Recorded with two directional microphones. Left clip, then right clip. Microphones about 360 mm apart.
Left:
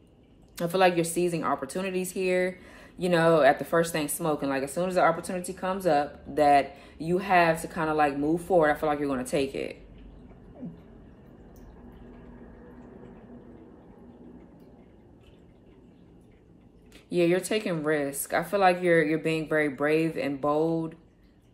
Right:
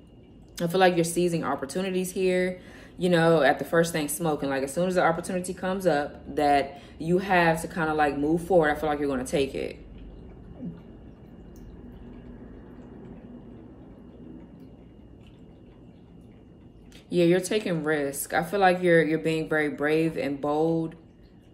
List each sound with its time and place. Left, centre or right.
0.6 s speech: centre
17.1 s speech: centre